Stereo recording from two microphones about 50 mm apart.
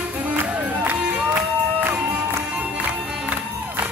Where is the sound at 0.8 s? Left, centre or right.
Right.